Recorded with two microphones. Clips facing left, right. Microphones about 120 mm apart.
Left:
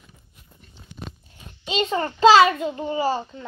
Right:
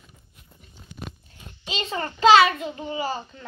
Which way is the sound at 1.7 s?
30° left (ahead or behind).